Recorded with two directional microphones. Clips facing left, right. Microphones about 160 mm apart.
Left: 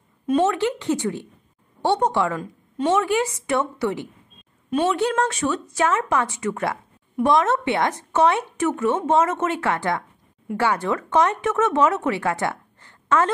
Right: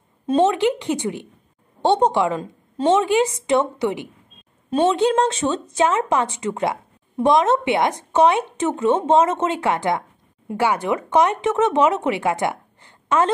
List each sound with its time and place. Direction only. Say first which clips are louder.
0.3 s speech: right 3 dB; 25° right (ahead or behind)